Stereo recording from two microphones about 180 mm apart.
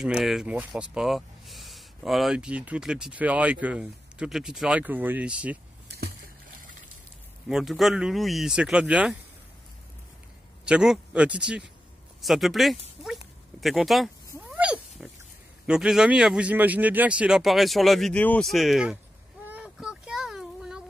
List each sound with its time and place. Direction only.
0.0 s speech: centre (ahead or behind)
5.9 s a sound: 60° right (ahead or behind)
7.4 s speech: centre (ahead or behind)
10.7 s speech: 5° right (ahead or behind)
14.5 s cat: 5° right (ahead or behind)
15.6 s speech: 5° right (ahead or behind)
19.4 s a sound: 5° right (ahead or behind)